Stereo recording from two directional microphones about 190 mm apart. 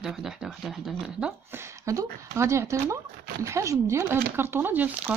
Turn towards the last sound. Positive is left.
turn(degrees=-10)  # may be behind; listen again after turning